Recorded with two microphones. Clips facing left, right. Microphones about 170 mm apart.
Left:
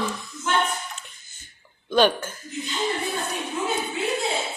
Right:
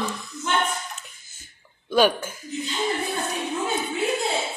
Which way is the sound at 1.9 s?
10° right (ahead or behind).